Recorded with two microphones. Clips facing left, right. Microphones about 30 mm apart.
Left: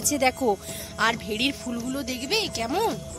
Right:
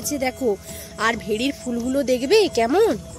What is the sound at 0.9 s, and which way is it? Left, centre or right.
Speech, centre.